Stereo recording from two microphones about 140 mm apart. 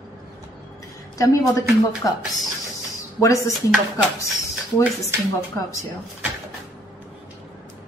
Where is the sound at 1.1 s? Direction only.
25° left (ahead or behind).